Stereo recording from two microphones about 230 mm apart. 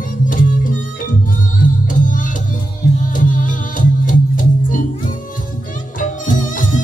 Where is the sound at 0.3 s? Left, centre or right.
Left.